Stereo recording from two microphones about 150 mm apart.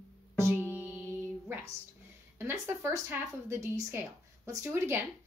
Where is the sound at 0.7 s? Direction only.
10° right (ahead or behind).